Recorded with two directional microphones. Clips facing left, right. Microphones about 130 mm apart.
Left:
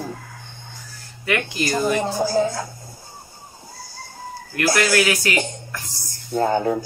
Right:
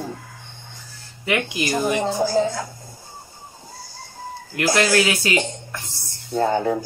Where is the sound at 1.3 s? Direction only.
15° right (ahead or behind).